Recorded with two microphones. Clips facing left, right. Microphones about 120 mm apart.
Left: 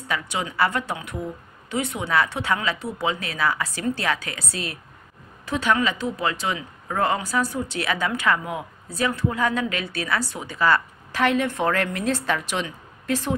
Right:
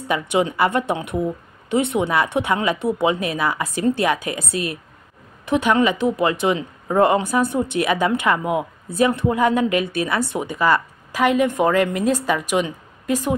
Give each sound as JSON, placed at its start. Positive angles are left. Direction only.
{"t": 0.1, "sound": "a woman's voice", "side_deg": -20}